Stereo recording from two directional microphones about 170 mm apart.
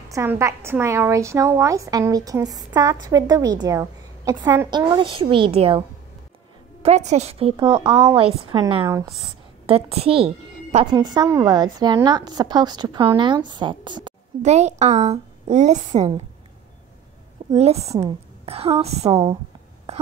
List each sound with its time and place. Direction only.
0.1 s a woman's voice: 15° right (ahead or behind)
8.8 s a woman's voice: 20° right (ahead or behind)
9.7 s a woman's voice: 35° right (ahead or behind)
14.4 s a woman's voice: 40° right (ahead or behind)
17.4 s a sound: 30° right (ahead or behind)
18.0 s a woman's voice: 35° right (ahead or behind)